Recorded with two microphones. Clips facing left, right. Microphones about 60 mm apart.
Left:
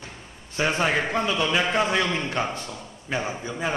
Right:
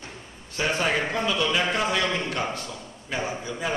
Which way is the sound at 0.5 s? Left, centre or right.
Left.